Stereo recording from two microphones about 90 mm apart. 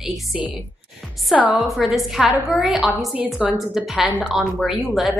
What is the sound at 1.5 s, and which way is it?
A woman's voice, centre (ahead or behind).